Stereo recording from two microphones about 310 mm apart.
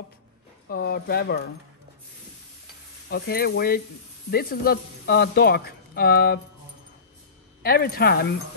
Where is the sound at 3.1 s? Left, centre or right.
Left.